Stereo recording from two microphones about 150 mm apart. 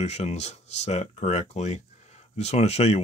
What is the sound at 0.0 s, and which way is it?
Speech, 45° left (ahead or behind).